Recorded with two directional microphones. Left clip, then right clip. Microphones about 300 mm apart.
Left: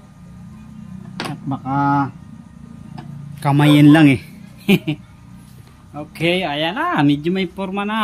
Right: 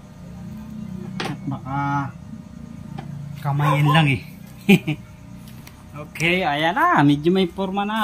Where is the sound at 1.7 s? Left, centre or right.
Left.